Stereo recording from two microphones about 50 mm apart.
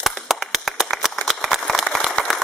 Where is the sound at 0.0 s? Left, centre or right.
Centre.